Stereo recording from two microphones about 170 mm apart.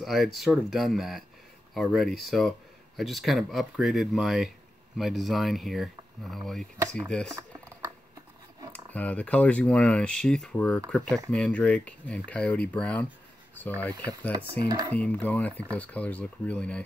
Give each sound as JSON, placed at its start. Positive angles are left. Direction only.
{"t": 0.0, "sound": "speech", "side_deg": 0}
{"t": 8.7, "sound": "speech", "side_deg": 10}
{"t": 14.3, "sound": "speech", "side_deg": -25}
{"t": 15.0, "sound": "speech", "side_deg": 10}